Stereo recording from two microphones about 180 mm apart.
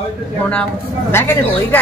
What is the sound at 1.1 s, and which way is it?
Speech, 15° left (ahead or behind).